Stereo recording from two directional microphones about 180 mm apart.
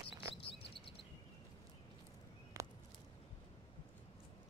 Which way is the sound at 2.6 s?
15° right (ahead or behind).